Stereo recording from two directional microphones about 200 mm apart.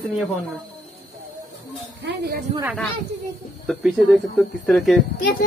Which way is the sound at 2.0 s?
55° right (ahead or behind).